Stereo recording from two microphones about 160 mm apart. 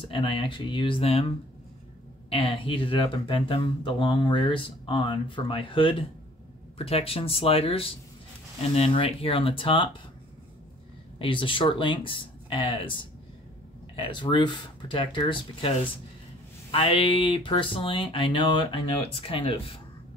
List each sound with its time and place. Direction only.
0.1 s speech: 35° left (ahead or behind)
2.2 s speech: 35° left (ahead or behind)
11.1 s speech: 30° left (ahead or behind)
16.7 s speech: 35° left (ahead or behind)